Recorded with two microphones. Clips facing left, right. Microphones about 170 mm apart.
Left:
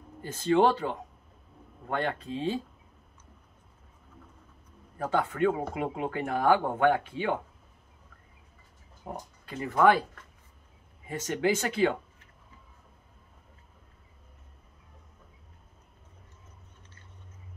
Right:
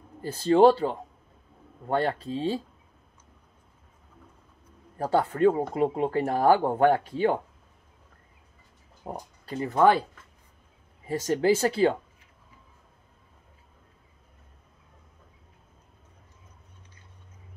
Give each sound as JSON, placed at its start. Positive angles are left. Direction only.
{"t": 0.2, "sound": "speech", "side_deg": -35}
{"t": 4.9, "sound": "speech", "side_deg": -35}
{"t": 9.0, "sound": "speech", "side_deg": -35}
{"t": 11.1, "sound": "speech", "side_deg": -35}